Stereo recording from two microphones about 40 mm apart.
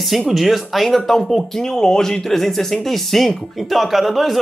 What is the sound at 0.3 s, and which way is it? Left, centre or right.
Speech, centre.